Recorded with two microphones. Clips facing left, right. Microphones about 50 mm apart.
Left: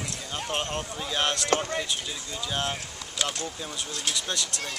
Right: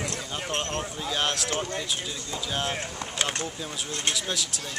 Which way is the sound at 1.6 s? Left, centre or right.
Centre.